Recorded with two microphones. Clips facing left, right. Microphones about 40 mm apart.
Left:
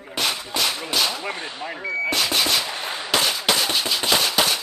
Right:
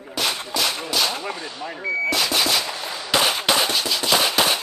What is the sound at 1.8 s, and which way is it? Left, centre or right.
Speech, centre.